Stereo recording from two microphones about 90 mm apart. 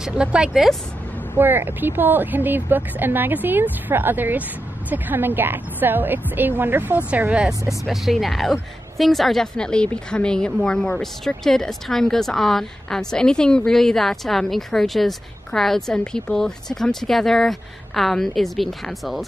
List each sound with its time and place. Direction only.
0.0 s speech: 10° right (ahead or behind)
1.4 s speech: 25° right (ahead or behind)
7.8 s a woman's voice: centre (ahead or behind)